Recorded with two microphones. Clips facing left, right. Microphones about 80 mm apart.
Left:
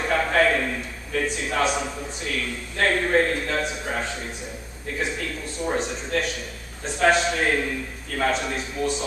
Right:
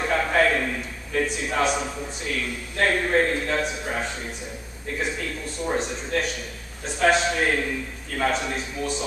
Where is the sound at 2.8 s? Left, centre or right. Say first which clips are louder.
Left 1 dB; centre.